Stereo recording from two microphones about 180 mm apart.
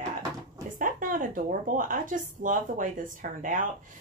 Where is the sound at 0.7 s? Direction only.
45° right (ahead or behind).